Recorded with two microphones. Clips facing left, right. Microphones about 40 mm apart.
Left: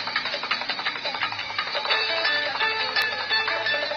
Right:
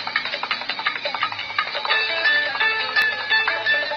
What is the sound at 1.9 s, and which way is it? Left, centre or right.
Music, centre.